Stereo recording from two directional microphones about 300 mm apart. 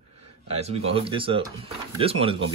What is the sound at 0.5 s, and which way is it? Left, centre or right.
Speech, right.